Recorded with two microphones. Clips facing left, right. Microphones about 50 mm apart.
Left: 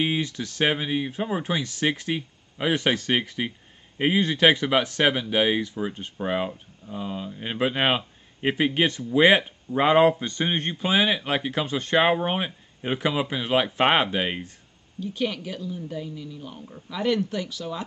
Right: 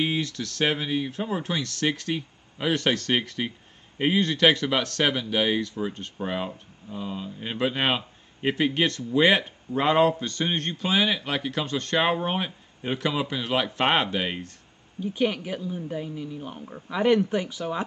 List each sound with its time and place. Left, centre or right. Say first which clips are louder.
0.0 s speech: left 1 dB; centre
15.0 s speech: right 2 dB; centre